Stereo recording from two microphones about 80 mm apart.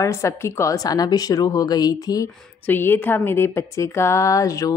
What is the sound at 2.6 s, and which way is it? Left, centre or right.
Speech, left.